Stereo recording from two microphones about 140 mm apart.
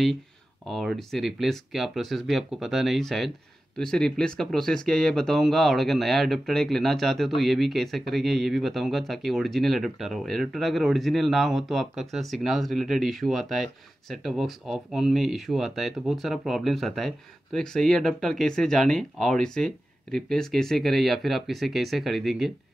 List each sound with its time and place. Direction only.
0.7 s speech: centre (ahead or behind)